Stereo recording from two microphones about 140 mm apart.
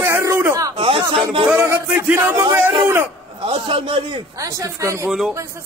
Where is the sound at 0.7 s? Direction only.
40° right (ahead or behind).